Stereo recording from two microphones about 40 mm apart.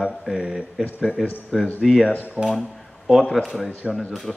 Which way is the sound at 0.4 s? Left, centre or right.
Centre.